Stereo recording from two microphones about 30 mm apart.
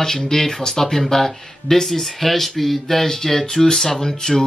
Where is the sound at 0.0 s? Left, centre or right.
Centre.